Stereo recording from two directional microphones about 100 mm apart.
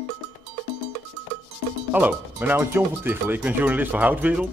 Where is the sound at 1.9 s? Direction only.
15° right (ahead or behind).